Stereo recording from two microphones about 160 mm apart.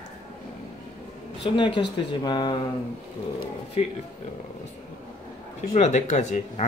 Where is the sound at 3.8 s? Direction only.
40° left (ahead or behind).